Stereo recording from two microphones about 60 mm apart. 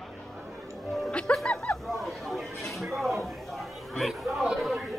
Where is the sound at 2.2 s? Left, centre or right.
Centre.